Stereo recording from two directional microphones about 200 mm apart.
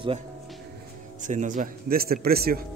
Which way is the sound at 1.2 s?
40° right (ahead or behind).